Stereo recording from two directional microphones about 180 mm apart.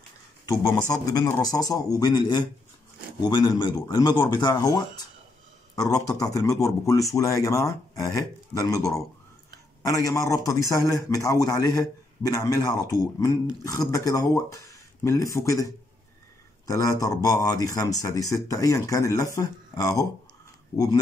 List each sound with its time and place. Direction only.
0.5 s a man's voice: 20° left (ahead or behind)